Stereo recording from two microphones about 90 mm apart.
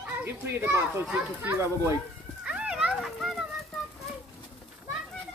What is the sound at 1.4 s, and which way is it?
Speech, 25° right (ahead or behind).